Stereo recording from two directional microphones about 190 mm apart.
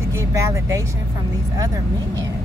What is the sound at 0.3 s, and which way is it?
Speech, 15° right (ahead or behind).